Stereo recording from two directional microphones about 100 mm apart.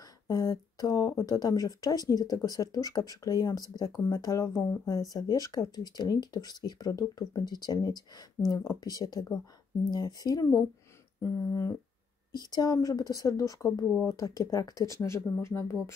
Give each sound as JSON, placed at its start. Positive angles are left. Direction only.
{"t": 0.3, "sound": "speech", "side_deg": 35}
{"t": 12.3, "sound": "speech", "side_deg": 45}